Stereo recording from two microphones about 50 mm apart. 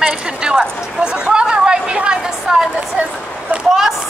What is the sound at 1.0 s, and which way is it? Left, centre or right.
Chatter, centre.